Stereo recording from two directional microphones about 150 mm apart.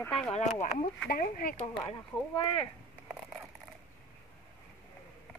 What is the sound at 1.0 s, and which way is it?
Speech, 75° left (ahead or behind).